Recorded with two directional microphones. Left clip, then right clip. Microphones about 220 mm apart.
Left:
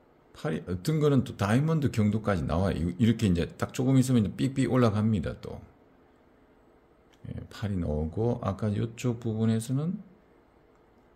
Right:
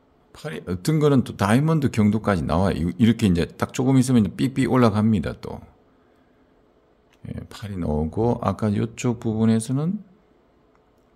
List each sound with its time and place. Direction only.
0.3 s speech: 30° right (ahead or behind)
7.2 s speech: 30° right (ahead or behind)